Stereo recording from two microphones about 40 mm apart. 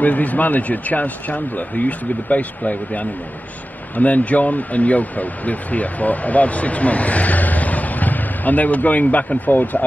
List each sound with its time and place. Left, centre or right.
0.0 s a man's voice: left